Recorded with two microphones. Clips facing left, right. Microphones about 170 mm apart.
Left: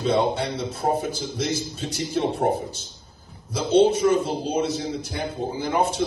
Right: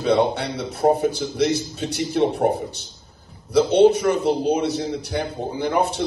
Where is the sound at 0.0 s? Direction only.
65° right (ahead or behind).